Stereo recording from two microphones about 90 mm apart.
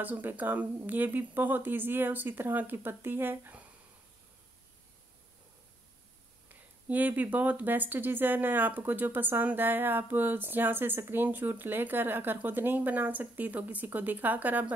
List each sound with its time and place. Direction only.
0.0 s speech: 20° right (ahead or behind)
6.5 s speech: 20° right (ahead or behind)